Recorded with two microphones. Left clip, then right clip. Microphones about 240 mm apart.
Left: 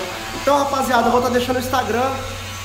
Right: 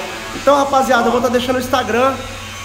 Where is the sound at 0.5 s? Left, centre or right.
Centre.